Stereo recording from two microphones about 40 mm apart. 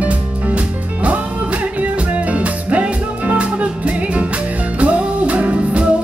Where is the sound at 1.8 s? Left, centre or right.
Right.